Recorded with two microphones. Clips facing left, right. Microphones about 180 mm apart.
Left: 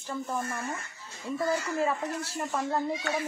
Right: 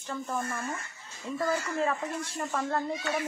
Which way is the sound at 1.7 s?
10° left (ahead or behind).